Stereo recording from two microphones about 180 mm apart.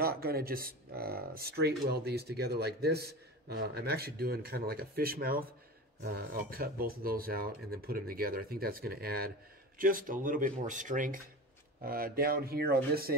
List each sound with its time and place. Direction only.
0.0 s speech: 55° right (ahead or behind)